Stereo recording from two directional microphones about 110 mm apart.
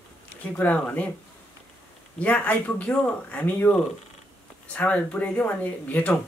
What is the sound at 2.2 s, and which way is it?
Speech, 15° left (ahead or behind).